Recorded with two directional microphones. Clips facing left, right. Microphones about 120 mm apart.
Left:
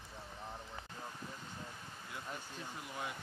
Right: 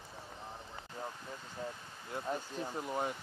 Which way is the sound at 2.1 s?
40° right (ahead or behind).